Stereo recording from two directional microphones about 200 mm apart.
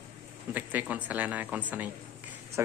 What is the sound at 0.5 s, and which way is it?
Speech, 10° right (ahead or behind).